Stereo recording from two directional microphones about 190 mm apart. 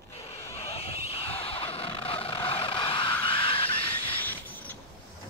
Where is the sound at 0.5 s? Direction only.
30° left (ahead or behind).